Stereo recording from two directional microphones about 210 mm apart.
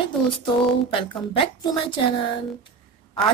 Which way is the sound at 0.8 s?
25° left (ahead or behind).